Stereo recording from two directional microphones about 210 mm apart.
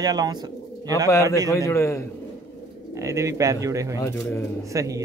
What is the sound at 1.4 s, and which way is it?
Speech, 15° left (ahead or behind).